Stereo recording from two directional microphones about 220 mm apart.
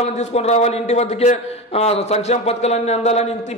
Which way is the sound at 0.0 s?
30° left (ahead or behind).